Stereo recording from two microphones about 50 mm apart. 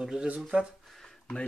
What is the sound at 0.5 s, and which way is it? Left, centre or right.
Speech, right.